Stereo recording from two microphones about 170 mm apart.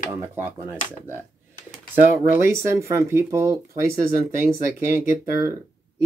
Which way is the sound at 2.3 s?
15° right (ahead or behind).